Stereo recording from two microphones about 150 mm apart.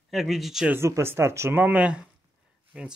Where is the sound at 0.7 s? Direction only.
15° right (ahead or behind).